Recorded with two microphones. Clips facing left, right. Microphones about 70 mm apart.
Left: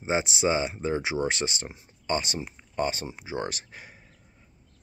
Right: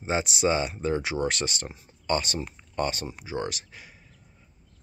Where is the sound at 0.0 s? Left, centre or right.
Left.